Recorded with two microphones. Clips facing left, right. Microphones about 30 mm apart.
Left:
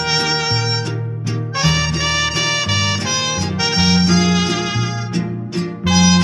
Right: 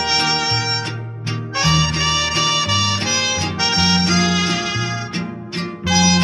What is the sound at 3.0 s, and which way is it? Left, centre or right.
Music, right.